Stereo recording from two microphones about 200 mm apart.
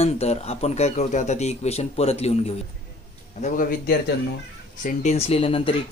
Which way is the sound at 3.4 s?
45° left (ahead or behind).